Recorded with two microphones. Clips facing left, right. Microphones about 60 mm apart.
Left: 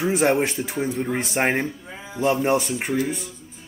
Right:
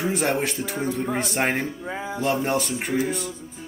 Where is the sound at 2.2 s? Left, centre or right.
Centre.